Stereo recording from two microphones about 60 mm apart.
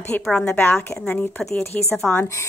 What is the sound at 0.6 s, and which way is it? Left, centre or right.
Speech, left.